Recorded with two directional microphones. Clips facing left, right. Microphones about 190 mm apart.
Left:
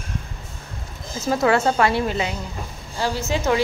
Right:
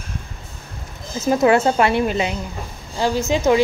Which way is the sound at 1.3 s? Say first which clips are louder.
Right 4 dB; 20° right (ahead or behind).